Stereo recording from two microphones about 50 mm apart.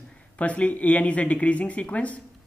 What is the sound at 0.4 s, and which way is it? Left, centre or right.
Speech, left.